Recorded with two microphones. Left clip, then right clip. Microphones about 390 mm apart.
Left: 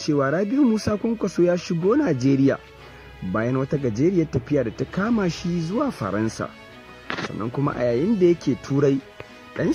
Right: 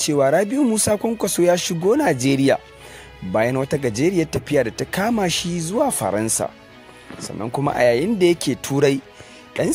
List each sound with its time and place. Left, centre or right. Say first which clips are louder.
0.0 s speech: right 5 dB; centre